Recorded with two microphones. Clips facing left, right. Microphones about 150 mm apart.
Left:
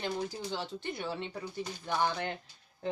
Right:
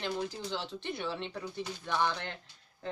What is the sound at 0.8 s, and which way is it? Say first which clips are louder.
Speech: even; 5° left (ahead or behind).